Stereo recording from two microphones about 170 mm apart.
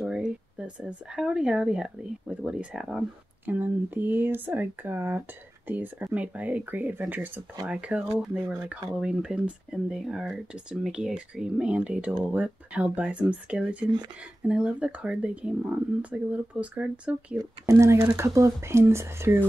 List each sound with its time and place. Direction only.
0.0 s speech: 5° right (ahead or behind)
17.4 s speech: 20° right (ahead or behind)